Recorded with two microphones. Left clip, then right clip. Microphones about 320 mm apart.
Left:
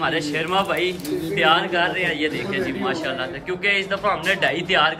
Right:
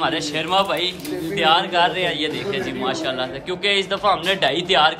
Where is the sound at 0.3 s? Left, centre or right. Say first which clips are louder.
Right 2 dB; centre.